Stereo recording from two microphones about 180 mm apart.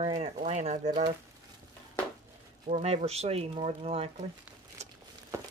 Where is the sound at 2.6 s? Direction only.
40° right (ahead or behind).